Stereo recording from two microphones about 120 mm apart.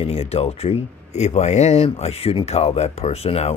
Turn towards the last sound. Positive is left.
turn(degrees=60)  # may be behind; listen again after turning